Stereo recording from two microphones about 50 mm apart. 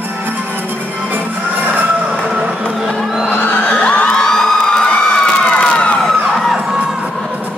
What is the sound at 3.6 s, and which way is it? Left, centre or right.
Music, left.